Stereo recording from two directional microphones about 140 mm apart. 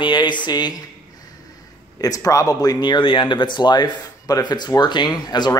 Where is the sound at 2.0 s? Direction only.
25° left (ahead or behind).